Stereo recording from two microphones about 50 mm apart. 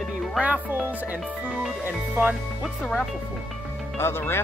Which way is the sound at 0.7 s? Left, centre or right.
Right.